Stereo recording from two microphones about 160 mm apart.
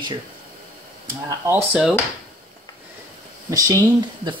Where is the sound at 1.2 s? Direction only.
15° right (ahead or behind).